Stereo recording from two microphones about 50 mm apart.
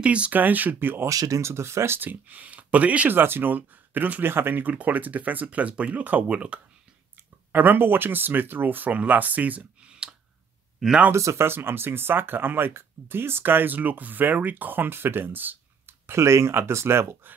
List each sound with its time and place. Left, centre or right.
0.0 s speech: right
0.4 s speech: right
1.0 s speech: right
2.0 s speech: right
3.1 s speech: right
7.5 s speech: right
9.8 s clicking: centre
11.1 s speech: right
11.4 s speech: right
16.1 s speech: right
16.5 s speech: right